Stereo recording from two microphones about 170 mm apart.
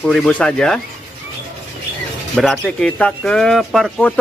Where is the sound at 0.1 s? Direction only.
5° left (ahead or behind).